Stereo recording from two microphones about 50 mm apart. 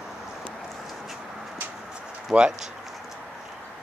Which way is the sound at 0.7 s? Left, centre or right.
Centre.